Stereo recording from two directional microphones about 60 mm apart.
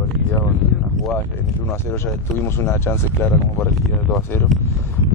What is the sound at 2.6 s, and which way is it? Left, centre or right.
Speech, left.